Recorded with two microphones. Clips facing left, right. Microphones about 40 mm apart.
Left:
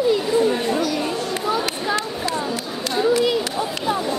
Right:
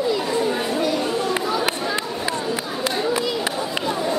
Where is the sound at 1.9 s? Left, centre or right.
Right.